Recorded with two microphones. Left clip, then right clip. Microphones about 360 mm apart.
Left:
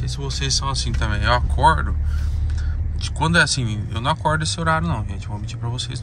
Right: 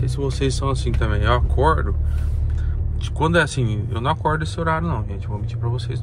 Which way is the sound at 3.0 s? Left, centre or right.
Centre.